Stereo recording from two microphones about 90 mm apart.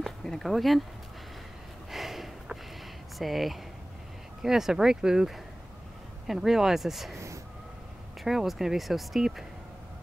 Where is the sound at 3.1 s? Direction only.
Centre (ahead or behind).